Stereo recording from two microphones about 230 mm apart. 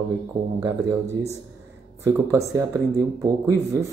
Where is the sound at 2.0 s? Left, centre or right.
Centre.